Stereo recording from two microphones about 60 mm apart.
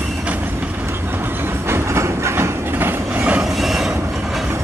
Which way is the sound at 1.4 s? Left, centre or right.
Right.